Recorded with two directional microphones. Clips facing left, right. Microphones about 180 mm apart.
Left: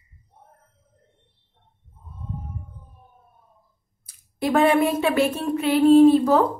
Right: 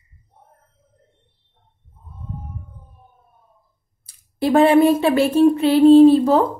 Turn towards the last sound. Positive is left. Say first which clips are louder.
# right 3 dB
turn(degrees=-30)  # may be behind; listen again after turning